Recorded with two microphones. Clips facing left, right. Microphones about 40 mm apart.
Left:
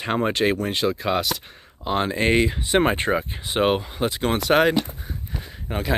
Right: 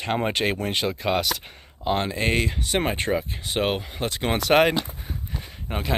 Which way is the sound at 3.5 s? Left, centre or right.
Centre.